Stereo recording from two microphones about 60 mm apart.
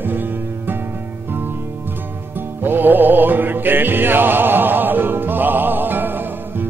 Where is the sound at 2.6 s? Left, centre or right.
Right.